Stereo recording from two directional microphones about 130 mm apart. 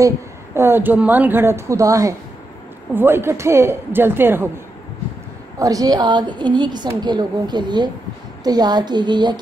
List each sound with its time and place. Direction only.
0.6 s a woman's voice: 15° right (ahead or behind)
5.6 s a woman's voice: 25° right (ahead or behind)